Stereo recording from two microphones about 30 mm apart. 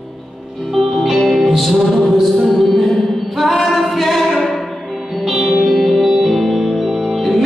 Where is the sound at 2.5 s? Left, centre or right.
Centre.